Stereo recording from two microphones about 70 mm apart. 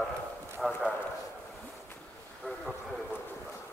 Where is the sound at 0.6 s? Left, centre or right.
Centre.